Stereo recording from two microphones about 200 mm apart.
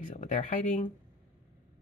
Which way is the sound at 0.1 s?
35° left (ahead or behind).